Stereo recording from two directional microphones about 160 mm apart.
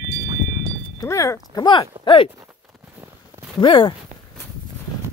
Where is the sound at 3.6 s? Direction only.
30° left (ahead or behind).